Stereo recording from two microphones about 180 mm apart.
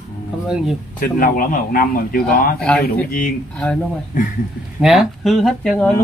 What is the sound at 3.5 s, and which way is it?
Speech, 5° left (ahead or behind).